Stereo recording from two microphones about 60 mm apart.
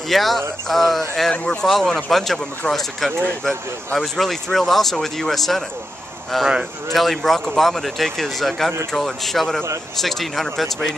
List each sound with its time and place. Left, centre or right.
0.1 s speech: centre
1.3 s speech: left
1.6 s speech: centre